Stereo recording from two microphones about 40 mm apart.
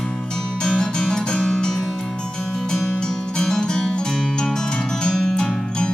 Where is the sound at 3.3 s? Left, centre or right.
Centre.